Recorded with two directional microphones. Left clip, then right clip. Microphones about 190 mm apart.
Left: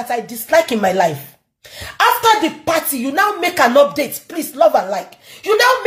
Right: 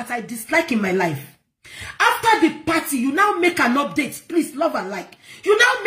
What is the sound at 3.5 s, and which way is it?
Speech, centre (ahead or behind).